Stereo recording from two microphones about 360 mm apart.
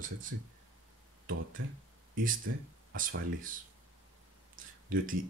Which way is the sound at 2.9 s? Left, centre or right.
Right.